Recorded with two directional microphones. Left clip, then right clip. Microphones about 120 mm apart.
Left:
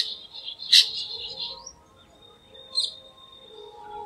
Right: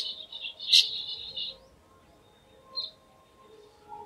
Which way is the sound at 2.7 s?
30° left (ahead or behind).